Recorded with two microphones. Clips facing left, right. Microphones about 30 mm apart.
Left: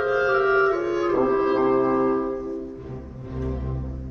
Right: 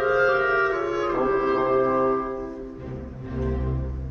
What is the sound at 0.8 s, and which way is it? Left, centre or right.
Brass instrument, centre.